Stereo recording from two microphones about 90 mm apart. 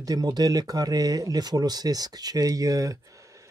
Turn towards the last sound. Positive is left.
turn(degrees=-40)  # may be behind; listen again after turning